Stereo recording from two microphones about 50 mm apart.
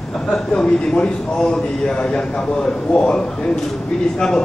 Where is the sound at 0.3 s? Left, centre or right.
Centre.